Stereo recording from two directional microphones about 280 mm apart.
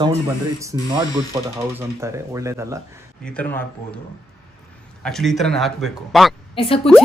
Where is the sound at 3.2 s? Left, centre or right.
Centre.